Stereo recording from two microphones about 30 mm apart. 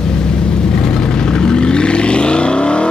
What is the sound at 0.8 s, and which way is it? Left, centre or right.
Vehicle, left.